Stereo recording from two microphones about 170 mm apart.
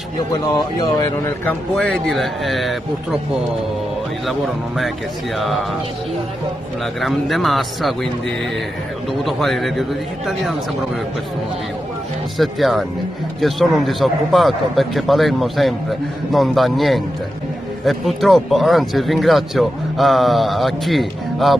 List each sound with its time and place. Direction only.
0.3 s speech: 30° left (ahead or behind)
1.4 s speech: 10° left (ahead or behind)
4.3 s speech: centre (ahead or behind)
7.0 s speech: centre (ahead or behind)
9.2 s speech: centre (ahead or behind)
12.4 s speech: centre (ahead or behind)